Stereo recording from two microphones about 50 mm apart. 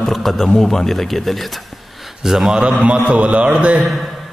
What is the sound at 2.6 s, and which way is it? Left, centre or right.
A man's voice, right.